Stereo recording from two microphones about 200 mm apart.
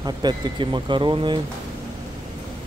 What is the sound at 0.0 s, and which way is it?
Speech, 20° right (ahead or behind).